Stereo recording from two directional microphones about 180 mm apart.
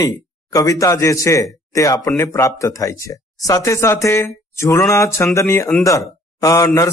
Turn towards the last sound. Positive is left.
turn(degrees=15)  # may be behind; listen again after turning